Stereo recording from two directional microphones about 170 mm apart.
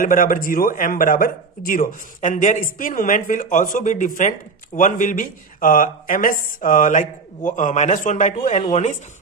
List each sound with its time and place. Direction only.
0.0 s speech: 55° left (ahead or behind)